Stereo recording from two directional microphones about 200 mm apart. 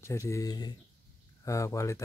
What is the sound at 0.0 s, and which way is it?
Speech, 15° left (ahead or behind).